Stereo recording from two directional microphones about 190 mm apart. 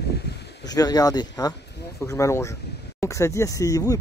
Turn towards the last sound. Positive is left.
turn(degrees=20)  # may be behind; listen again after turning